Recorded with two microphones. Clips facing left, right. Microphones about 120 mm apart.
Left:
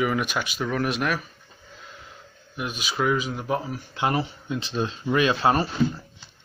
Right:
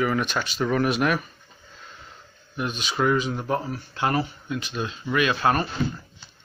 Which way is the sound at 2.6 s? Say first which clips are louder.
Right 2 dB; 5° left (ahead or behind).